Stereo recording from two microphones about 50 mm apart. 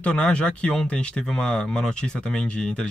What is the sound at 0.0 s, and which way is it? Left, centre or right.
Speech, left.